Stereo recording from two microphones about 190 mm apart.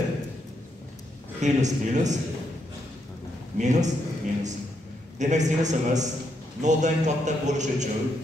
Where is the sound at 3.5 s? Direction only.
40° right (ahead or behind).